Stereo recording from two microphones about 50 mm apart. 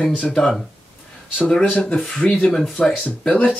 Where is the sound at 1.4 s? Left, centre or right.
Left.